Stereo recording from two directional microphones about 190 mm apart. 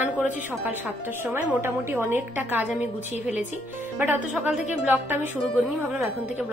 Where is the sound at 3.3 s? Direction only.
40° left (ahead or behind).